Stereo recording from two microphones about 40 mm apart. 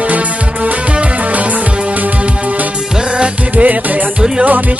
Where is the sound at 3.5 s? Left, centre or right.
Right.